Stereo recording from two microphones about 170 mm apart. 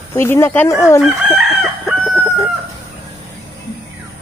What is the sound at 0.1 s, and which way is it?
Speech, 15° left (ahead or behind).